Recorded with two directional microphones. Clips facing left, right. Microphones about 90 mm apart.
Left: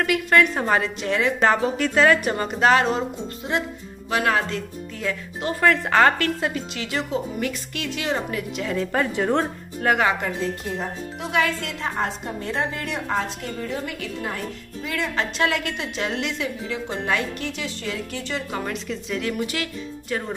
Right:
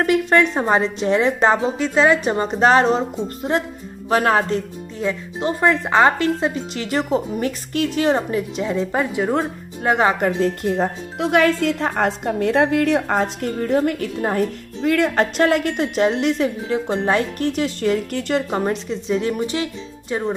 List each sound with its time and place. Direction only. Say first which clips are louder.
0.0 s speech: right 3 dB; 30° right (ahead or behind); by 9.5 s 10° right (ahead or behind)
9.8 s speech: right 3 dB; 30° right (ahead or behind)
10.2 s speech: right 8 dB; 60° right (ahead or behind)
14.8 s speech: right 9 dB; 60° right (ahead or behind)
15.4 s speech: right 6 dB; 40° right (ahead or behind)
17.5 s speech: right 10 dB; 50° right (ahead or behind)
18.5 s speech: right 6 dB; 35° right (ahead or behind)